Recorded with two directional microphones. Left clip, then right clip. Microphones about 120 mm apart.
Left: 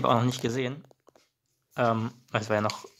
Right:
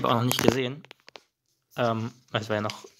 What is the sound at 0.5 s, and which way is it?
Speech, 5° right (ahead or behind).